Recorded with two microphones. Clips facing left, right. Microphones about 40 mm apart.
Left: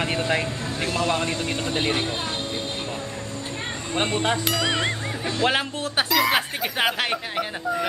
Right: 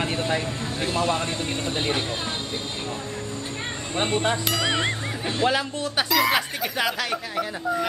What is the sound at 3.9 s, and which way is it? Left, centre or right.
Speech, left.